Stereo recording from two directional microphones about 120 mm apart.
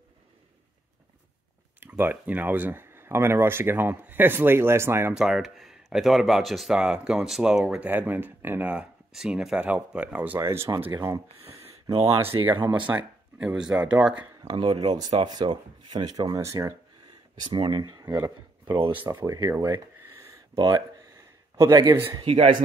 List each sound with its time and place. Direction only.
1.8 s speech: 15° right (ahead or behind)
5.1 s speech: 5° right (ahead or behind)
9.1 s speech: 5° right (ahead or behind); by 11.2 s 25° right (ahead or behind)
11.6 s a sound: 55° right (ahead or behind)
12.6 s speech: 15° right (ahead or behind)
14.6 s speech: 40° right (ahead or behind)
17.6 s speech: 35° right (ahead or behind)
19.5 s a sound: 20° right (ahead or behind)
20.6 s speech: 35° right (ahead or behind)
21.5 s speech: 25° right (ahead or behind)
22.2 s speech: 50° right (ahead or behind)